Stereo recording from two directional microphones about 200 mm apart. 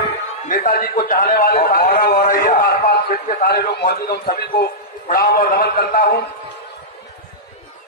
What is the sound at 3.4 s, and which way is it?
A man's voice, 50° left (ahead or behind).